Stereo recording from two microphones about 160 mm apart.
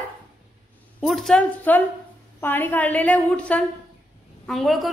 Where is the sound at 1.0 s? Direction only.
5° left (ahead or behind).